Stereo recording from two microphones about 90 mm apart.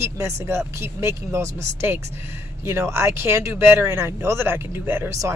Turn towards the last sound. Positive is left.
turn(degrees=-25)  # may be behind; listen again after turning